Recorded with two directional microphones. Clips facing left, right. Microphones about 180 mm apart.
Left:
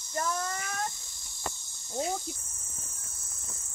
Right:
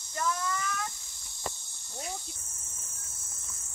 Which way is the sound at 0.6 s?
40° left (ahead or behind).